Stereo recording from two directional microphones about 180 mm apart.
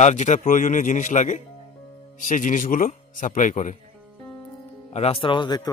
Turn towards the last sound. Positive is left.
turn(degrees=25)  # may be behind; listen again after turning